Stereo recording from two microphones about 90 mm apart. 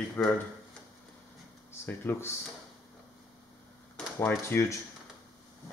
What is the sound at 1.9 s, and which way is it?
Speech, 25° left (ahead or behind).